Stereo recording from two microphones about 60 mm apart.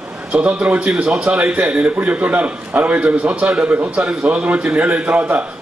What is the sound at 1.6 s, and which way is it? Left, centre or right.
A man's voice, right.